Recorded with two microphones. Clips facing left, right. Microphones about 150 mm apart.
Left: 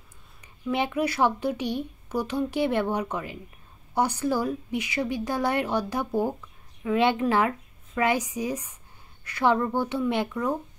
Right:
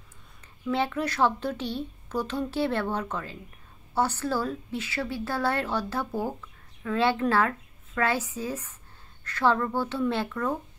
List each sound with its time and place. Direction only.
0.7 s speech: 15° left (ahead or behind)